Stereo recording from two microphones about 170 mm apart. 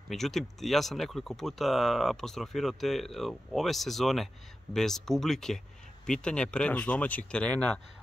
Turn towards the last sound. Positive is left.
turn(degrees=5)  # may be behind; listen again after turning